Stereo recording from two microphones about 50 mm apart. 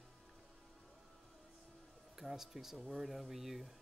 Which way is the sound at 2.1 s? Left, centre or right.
Centre.